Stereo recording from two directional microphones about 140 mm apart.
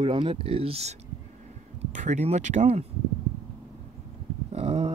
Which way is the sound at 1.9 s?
60° right (ahead or behind).